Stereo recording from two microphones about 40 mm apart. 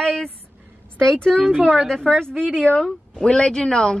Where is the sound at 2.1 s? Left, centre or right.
Centre.